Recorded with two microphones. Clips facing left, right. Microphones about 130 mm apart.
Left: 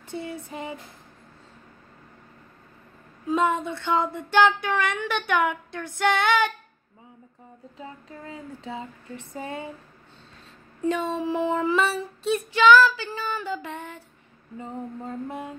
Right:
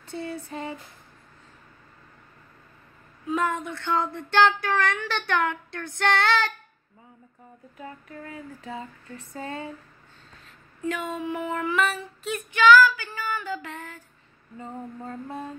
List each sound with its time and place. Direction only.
0.0 s speech: 20° left (ahead or behind)
3.3 s speech: 20° left (ahead or behind)
5.4 s child singing: 10° left (ahead or behind)
7.7 s speech: 25° left (ahead or behind)
10.8 s speech: 30° left (ahead or behind)
14.6 s child singing: 15° left (ahead or behind)